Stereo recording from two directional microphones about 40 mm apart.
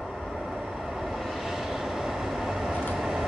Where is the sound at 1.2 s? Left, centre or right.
Centre.